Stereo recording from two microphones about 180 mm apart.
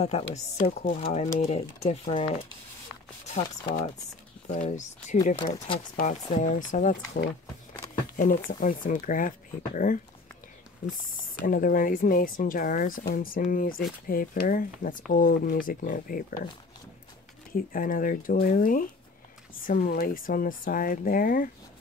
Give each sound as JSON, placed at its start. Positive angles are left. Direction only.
{"t": 0.0, "sound": "speech", "side_deg": 35}
{"t": 3.3, "sound": "speech", "side_deg": 40}
{"t": 8.2, "sound": "speech", "side_deg": 50}
{"t": 11.4, "sound": "speech", "side_deg": 50}
{"t": 17.6, "sound": "speech", "side_deg": 50}